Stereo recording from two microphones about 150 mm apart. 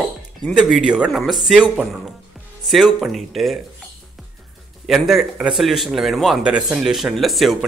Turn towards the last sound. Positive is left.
turn(degrees=0)  # may be behind; listen again after turning